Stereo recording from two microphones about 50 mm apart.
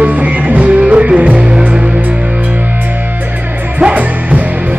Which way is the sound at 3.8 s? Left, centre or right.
Right.